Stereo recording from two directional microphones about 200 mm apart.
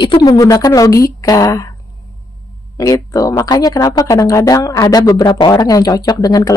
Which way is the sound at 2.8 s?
15° left (ahead or behind).